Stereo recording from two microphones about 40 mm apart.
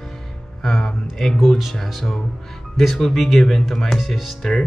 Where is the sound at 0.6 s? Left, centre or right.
Centre.